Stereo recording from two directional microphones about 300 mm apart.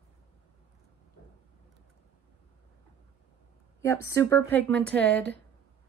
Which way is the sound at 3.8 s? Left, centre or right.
Centre.